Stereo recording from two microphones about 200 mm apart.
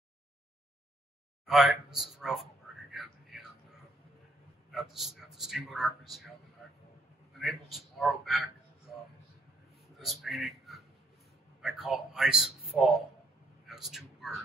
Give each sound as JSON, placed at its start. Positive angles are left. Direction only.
{"t": 1.4, "sound": "speech", "side_deg": 0}
{"t": 2.9, "sound": "a sound", "side_deg": 0}
{"t": 4.6, "sound": "a man's voice", "side_deg": 0}
{"t": 7.3, "sound": "a man's voice", "side_deg": 0}
{"t": 9.9, "sound": "a man's voice", "side_deg": 0}
{"t": 13.7, "sound": "vehicle", "side_deg": 0}